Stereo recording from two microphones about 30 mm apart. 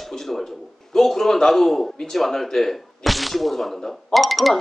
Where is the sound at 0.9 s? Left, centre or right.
Centre.